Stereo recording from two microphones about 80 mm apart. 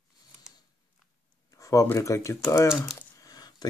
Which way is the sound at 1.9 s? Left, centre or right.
Left.